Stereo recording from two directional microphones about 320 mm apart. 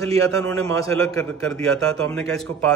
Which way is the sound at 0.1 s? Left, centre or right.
Centre.